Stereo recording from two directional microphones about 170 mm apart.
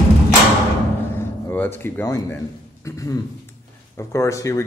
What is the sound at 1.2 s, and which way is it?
A man's voice, 15° left (ahead or behind).